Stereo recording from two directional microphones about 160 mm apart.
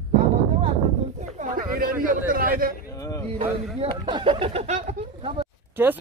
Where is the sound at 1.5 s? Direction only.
60° right (ahead or behind).